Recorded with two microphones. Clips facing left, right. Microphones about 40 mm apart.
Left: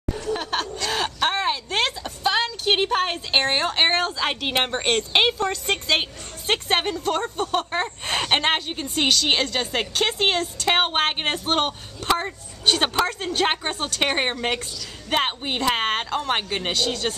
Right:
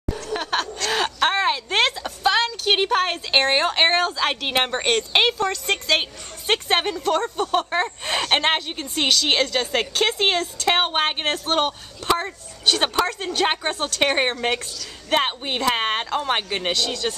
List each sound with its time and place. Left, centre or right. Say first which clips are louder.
0.4 s a sound: right 2 dB; centre
2.0 s a sound: right 3 dB; centre
3.1 s a woman's voice: right 2 dB; centre
6.4 s a woman's voice: right 1 dB; centre
7.1 s speech: right 5 dB; centre
7.3 s speech: right 2 dB; centre
10.6 s speech: even; centre
16.7 s speech: even; centre